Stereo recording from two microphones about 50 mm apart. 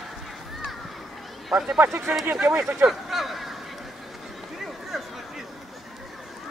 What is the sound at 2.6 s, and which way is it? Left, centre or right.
Speech, right.